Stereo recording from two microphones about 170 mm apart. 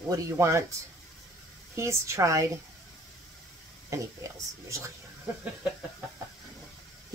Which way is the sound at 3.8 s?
20° right (ahead or behind).